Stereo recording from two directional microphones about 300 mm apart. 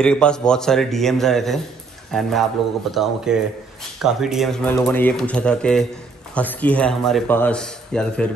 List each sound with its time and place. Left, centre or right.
0.0 s speech: centre